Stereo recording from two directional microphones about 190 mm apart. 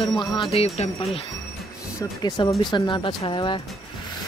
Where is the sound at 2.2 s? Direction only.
25° left (ahead or behind).